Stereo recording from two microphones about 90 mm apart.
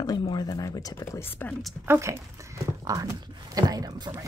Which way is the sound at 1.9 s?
30° right (ahead or behind).